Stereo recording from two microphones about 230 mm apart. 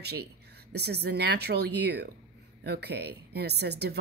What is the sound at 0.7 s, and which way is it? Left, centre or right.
Speech, right.